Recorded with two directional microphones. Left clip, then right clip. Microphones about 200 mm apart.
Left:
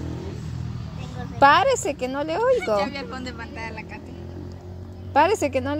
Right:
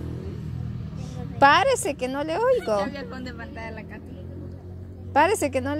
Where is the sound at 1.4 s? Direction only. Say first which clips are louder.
Left 1 dB; 5° right (ahead or behind).